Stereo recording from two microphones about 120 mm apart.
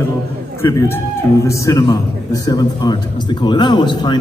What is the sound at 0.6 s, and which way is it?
A man's voice, 25° left (ahead or behind).